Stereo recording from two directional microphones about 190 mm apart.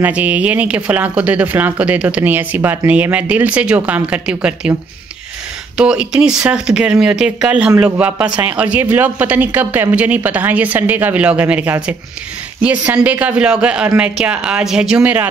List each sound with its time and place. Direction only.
0.0 s speech: 10° right (ahead or behind)
5.8 s speech: 5° right (ahead or behind)